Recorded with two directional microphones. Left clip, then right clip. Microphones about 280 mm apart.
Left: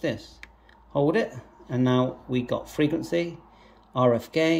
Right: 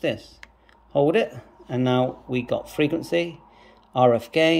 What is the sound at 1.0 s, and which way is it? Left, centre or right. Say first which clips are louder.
Speech: right 4 dB; centre.